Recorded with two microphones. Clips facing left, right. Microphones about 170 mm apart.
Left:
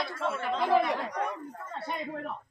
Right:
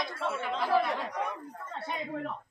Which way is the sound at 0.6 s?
15° left (ahead or behind).